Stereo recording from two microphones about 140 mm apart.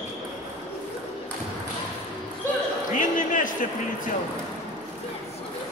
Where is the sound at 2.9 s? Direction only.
70° left (ahead or behind).